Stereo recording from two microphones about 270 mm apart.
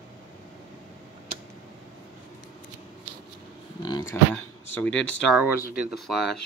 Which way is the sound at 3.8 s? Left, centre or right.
Centre.